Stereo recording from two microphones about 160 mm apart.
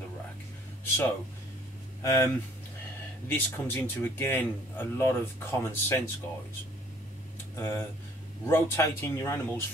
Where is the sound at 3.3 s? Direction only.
15° left (ahead or behind).